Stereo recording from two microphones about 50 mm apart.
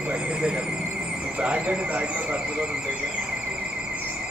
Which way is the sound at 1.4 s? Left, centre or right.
Right.